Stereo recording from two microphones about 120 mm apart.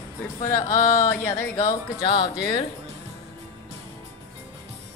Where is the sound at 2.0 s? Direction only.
40° left (ahead or behind).